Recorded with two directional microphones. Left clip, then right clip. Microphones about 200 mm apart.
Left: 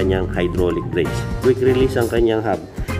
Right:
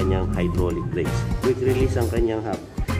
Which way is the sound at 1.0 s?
Centre (ahead or behind).